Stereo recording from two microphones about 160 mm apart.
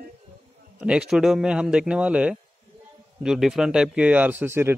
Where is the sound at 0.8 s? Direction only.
5° right (ahead or behind).